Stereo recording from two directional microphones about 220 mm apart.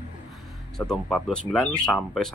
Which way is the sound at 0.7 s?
Centre (ahead or behind).